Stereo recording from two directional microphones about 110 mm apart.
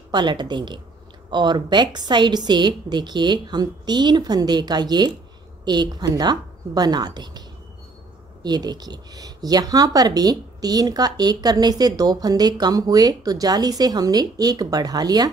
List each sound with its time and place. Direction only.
0.1 s a woman's voice: 45° right (ahead or behind)
8.5 s speech: 40° right (ahead or behind)